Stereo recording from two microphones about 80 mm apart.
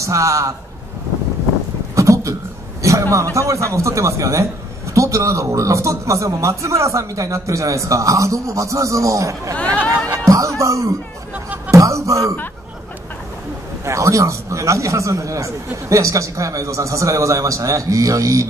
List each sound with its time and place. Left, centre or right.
0.0 s a man's voice: right
2.0 s a sound: right
2.8 s a man's voice: right
11.3 s music: centre
11.7 s speech: right
13.8 s a man's voice: right